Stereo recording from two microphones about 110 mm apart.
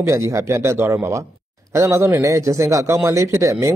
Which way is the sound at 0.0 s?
25° right (ahead or behind).